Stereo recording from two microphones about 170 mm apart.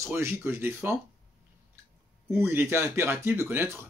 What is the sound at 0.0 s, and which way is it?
Speech, 15° right (ahead or behind).